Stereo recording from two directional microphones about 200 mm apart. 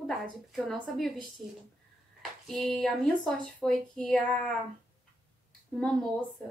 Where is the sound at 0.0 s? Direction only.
Centre (ahead or behind).